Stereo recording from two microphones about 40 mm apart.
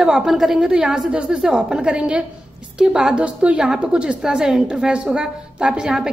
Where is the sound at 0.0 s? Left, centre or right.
Centre.